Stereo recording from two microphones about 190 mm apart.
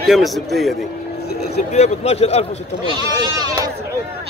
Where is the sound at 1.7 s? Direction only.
35° left (ahead or behind).